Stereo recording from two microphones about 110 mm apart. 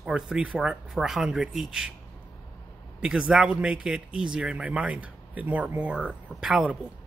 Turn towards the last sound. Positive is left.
turn(degrees=-5)  # may be behind; listen again after turning